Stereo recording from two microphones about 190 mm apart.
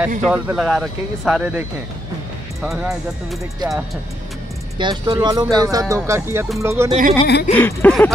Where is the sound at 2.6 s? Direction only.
Centre (ahead or behind).